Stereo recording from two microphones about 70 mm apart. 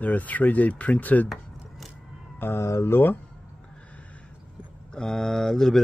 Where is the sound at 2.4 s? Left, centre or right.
Left.